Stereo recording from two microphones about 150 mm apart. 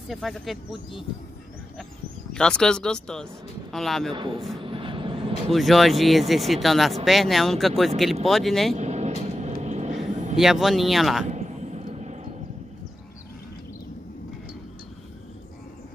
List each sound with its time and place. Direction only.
0.1 s speech: centre (ahead or behind)
2.3 s speech: 5° left (ahead or behind)
4.1 s a man's voice: 35° right (ahead or behind)
4.6 s vehicle: 35° right (ahead or behind)
5.5 s speech: centre (ahead or behind)
8.7 s vehicle: 50° right (ahead or behind)
10.3 s speech: centre (ahead or behind)
11.3 s vehicle: 50° right (ahead or behind)